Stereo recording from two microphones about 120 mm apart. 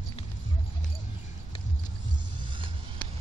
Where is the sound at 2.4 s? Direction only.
40° right (ahead or behind).